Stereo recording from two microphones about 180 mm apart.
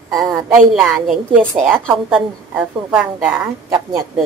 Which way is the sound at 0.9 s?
5° right (ahead or behind).